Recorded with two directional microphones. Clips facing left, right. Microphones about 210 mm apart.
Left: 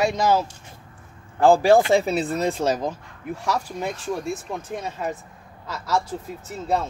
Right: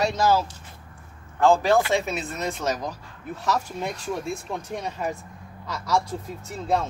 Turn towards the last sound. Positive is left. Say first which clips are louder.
# even
turn(degrees=0)  # may be behind; listen again after turning